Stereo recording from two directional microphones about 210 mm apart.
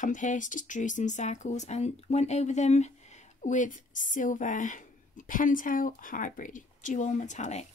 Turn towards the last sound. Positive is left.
turn(degrees=35)  # may be behind; listen again after turning